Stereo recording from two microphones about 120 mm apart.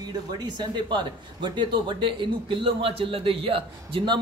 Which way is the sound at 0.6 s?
40° right (ahead or behind).